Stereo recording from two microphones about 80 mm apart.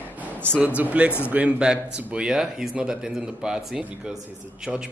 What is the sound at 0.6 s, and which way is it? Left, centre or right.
Speech, centre.